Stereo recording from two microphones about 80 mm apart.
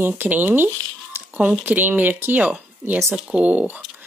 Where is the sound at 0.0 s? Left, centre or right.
Right.